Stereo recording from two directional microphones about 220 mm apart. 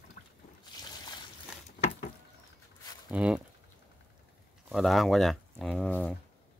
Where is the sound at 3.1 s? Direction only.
5° right (ahead or behind).